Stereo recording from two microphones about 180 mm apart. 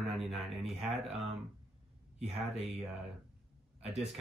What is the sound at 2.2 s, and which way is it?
Speech, 35° right (ahead or behind).